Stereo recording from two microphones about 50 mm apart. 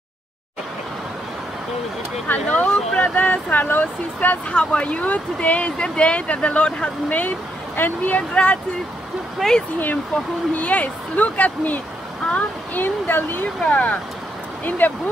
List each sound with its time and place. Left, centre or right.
2.2 s speech: left
4.5 s speech: left
9.4 s speech: centre
10.5 s speech: left
13.7 s speech: left
14.8 s speech: left